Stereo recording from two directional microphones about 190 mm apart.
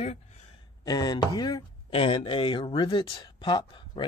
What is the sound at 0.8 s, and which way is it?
Speech, 20° left (ahead or behind).